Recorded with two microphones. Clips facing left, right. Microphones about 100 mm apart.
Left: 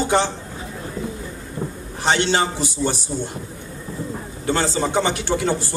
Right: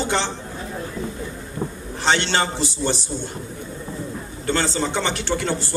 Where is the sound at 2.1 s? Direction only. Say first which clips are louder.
Left 1 dB; 15° left (ahead or behind).